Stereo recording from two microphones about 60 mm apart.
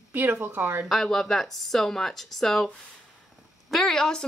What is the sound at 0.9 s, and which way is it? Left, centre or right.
Speech, centre.